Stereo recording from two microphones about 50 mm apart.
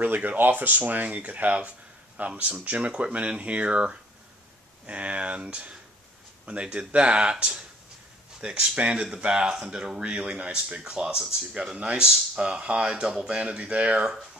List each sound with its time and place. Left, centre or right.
0.0 s speech: right